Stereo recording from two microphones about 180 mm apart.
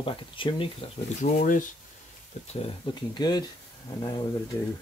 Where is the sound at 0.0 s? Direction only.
30° left (ahead or behind).